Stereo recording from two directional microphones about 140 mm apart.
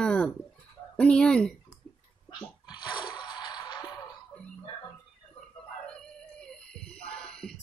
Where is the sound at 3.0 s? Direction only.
35° left (ahead or behind).